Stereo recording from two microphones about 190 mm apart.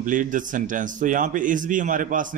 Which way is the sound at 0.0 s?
45° right (ahead or behind).